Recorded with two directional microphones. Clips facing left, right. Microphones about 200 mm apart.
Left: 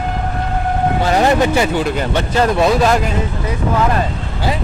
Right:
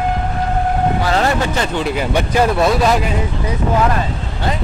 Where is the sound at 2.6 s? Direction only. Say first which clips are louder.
Left 1 dB; centre (ahead or behind).